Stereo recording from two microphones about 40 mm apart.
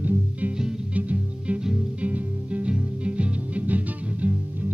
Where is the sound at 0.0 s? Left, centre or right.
Right.